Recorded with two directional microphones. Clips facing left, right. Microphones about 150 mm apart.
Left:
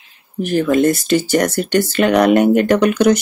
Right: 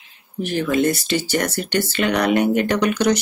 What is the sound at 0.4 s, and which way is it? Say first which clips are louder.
Speech: left 5 dB; 45° left (ahead or behind).